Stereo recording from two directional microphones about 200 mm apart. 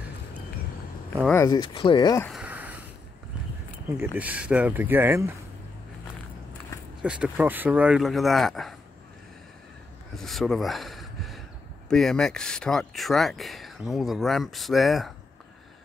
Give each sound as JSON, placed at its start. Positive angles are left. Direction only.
{"t": 1.1, "sound": "speech", "side_deg": 10}
{"t": 2.2, "sound": "a sound", "side_deg": -5}
{"t": 3.9, "sound": "speech", "side_deg": -10}
{"t": 7.0, "sound": "speech", "side_deg": -5}
{"t": 10.1, "sound": "a sound", "side_deg": 0}
{"t": 11.9, "sound": "speech", "side_deg": 5}